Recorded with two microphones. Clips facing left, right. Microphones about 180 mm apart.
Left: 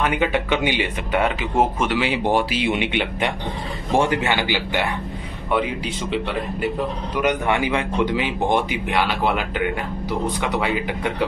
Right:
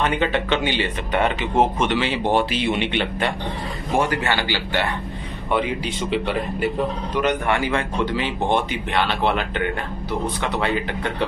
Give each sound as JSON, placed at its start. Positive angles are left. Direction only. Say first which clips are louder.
{"t": 0.0, "sound": "speech", "louder": "even", "side_deg": 10}
{"t": 5.5, "sound": "speech", "louder": "even", "side_deg": 0}
{"t": 7.2, "sound": "speech", "louder": "left 1 dB", "side_deg": 15}